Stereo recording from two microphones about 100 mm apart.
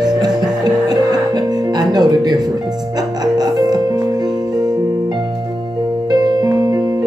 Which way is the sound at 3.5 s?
40° right (ahead or behind).